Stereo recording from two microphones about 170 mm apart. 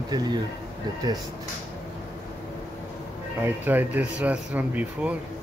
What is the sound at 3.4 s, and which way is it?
Speech, 10° right (ahead or behind).